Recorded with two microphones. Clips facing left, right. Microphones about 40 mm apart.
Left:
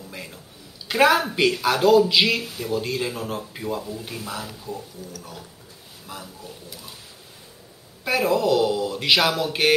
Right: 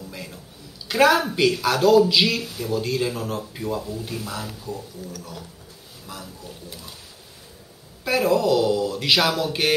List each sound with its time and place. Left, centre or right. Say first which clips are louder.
0.1 s a sound: even; centre
0.8 s a woman's voice: even; centre
6.0 s speech: even; centre
8.0 s speech: right 1 dB; centre